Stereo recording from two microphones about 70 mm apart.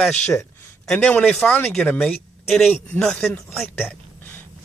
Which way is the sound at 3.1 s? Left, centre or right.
Centre.